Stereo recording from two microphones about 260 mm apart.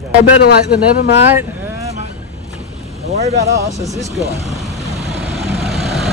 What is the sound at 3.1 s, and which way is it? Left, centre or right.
Speech, right.